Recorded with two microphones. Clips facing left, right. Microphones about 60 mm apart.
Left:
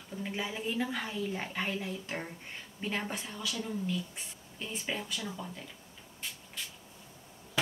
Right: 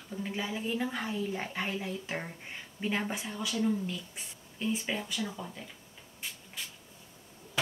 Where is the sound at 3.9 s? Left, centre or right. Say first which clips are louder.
Left 3 dB; centre.